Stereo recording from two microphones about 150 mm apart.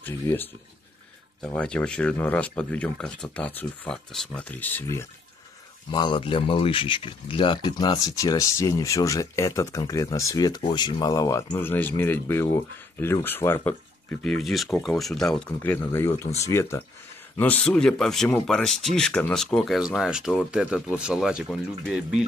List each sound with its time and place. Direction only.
0.0 s speech: 15° left (ahead or behind)
5.9 s speech: 30° left (ahead or behind); by 22.2 s 5° right (ahead or behind)